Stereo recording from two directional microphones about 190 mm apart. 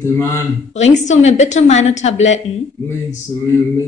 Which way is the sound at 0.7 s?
40° left (ahead or behind).